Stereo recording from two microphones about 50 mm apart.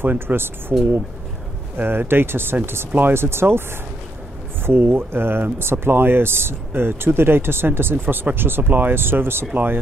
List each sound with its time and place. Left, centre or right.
0.0 s speech: right
1.8 s speech: right
4.6 s speech: right
8.0 s speech: right
9.5 s speech: right